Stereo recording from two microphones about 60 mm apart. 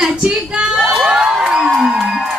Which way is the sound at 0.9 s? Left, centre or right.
Centre.